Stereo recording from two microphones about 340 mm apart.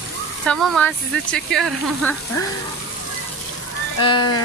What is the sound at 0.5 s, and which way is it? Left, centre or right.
Speech, centre.